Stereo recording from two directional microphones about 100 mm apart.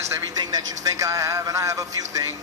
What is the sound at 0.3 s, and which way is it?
A man's voice, 40° right (ahead or behind).